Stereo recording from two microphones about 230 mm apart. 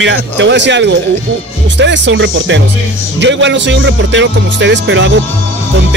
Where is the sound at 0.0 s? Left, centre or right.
Right.